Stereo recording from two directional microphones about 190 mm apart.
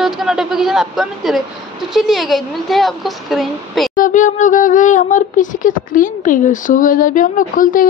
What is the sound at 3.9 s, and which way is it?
Speech, 40° left (ahead or behind).